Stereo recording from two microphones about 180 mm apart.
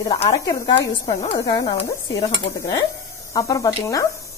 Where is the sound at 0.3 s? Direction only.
25° left (ahead or behind).